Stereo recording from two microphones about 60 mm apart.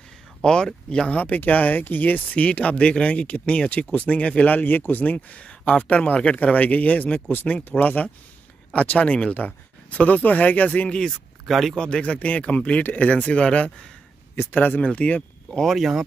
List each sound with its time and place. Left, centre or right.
0.4 s speech: centre
1.1 s speech: left
11.4 s speech: centre
11.7 s speech: centre
14.3 s speech: left
14.6 s speech: left
15.6 s speech: centre